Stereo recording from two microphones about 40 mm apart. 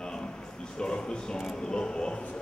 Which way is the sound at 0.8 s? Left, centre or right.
Left.